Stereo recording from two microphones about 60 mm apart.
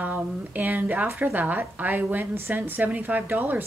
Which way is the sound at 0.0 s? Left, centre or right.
Right.